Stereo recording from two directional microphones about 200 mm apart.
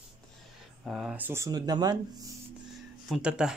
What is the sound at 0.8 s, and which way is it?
Speech, centre (ahead or behind).